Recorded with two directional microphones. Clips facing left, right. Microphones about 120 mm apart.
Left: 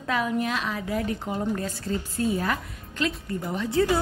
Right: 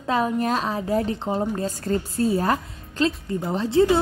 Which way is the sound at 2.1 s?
35° right (ahead or behind).